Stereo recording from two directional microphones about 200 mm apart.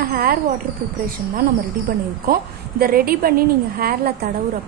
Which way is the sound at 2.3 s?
50° right (ahead or behind).